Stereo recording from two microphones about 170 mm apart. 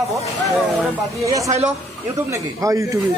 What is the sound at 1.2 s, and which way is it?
Speech, 20° right (ahead or behind).